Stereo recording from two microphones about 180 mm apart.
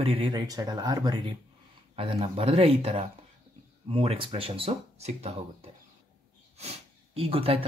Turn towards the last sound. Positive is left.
turn(degrees=-30)  # may be behind; listen again after turning